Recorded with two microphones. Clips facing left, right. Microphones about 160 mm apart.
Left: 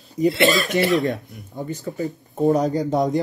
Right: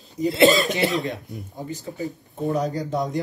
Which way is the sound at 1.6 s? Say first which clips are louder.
Left 4 dB; 40° left (ahead or behind).